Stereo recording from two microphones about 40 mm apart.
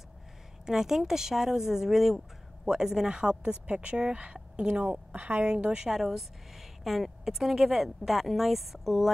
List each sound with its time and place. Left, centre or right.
0.7 s speech: centre; by 4.6 s right
5.1 s a woman's voice: right
5.4 s speech: right
5.9 s a woman's voice: centre